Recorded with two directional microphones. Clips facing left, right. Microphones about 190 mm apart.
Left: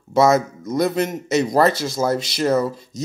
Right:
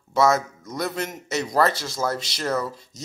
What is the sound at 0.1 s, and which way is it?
Speech, 15° left (ahead or behind).